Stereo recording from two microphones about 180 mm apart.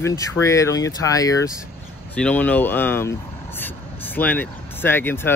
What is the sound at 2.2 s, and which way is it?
Speech, 5° left (ahead or behind).